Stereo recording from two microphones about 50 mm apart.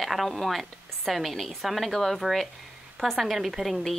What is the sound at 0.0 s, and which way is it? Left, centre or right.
A woman's voice, centre.